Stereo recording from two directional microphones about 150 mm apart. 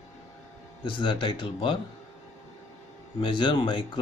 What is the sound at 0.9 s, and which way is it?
Speech, 35° left (ahead or behind).